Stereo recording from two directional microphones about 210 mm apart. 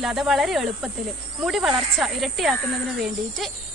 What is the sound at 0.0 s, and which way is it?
Speech, centre (ahead or behind).